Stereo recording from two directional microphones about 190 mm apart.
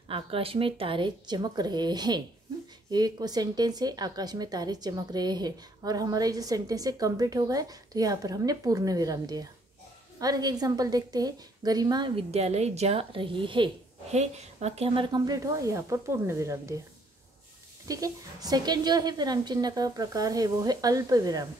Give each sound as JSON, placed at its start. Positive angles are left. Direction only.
{"t": 0.1, "sound": "a woman's voice", "side_deg": -30}
{"t": 17.8, "sound": "a woman's voice", "side_deg": -20}